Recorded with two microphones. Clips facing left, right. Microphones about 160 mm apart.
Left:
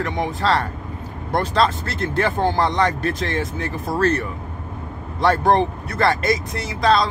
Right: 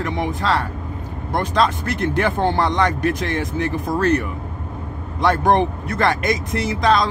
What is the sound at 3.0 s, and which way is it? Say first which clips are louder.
Speech: right 2 dB; 15° right (ahead or behind).